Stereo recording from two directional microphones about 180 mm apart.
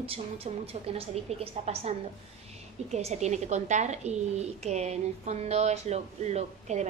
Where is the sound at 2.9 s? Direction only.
40° right (ahead or behind).